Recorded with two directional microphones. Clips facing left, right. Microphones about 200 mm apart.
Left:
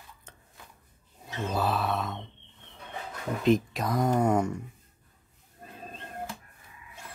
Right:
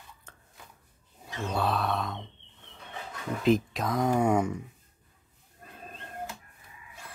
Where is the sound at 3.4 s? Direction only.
Centre (ahead or behind).